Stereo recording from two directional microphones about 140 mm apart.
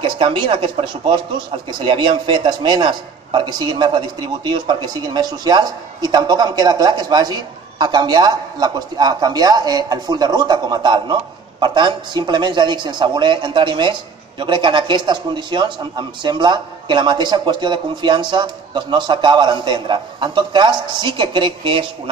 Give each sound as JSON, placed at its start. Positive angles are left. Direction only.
{"t": 0.0, "sound": "a man's voice", "side_deg": -35}